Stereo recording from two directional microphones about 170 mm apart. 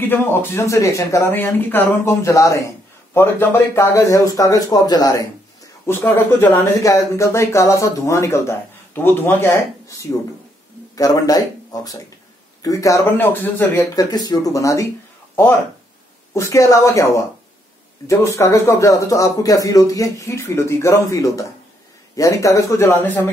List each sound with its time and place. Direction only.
0.0 s speech: 15° left (ahead or behind)
16.3 s speech: 15° left (ahead or behind)